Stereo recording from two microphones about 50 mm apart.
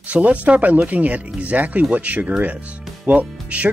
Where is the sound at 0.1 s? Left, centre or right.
Right.